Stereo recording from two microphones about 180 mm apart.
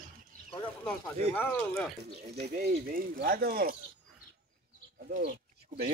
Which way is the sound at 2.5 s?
55° right (ahead or behind).